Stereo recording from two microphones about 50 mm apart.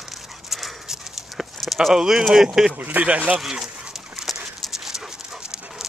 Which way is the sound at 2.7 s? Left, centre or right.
Right.